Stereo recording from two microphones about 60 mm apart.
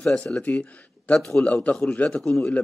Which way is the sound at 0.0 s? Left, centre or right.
Centre.